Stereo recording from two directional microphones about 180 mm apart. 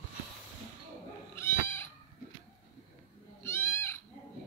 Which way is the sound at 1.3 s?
15° left (ahead or behind).